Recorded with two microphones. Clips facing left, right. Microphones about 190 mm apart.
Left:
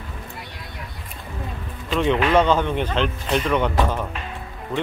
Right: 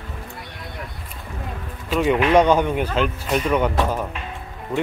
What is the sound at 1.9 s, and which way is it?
Speech, 5° right (ahead or behind).